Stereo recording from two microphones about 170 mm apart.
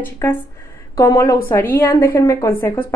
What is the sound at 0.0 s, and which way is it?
A woman's voice, 10° left (ahead or behind).